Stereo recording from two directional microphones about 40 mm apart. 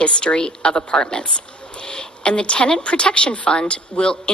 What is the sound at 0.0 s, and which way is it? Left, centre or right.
A woman's voice, left.